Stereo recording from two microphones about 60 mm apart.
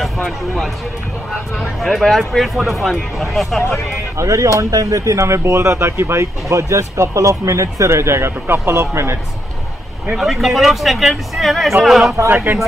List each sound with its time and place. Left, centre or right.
0.0 s speech: centre
4.2 s speech: right
10.1 s speech: centre